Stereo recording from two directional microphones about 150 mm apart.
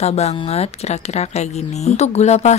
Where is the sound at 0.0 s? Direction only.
45° left (ahead or behind).